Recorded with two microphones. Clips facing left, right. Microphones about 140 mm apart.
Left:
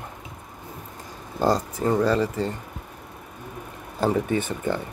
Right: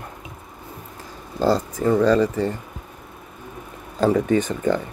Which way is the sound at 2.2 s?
15° right (ahead or behind).